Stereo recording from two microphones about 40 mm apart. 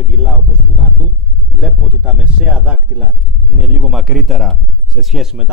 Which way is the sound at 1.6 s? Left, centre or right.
Right.